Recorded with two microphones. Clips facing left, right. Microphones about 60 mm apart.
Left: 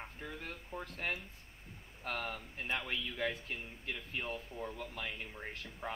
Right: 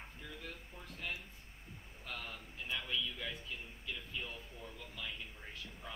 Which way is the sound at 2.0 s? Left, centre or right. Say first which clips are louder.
Left 7 dB; left.